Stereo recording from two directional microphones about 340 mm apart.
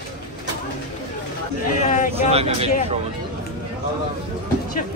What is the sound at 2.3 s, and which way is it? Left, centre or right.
Speech, centre.